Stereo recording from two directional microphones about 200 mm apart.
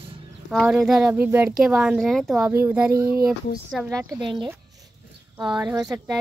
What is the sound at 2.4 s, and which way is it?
Speech, 10° right (ahead or behind).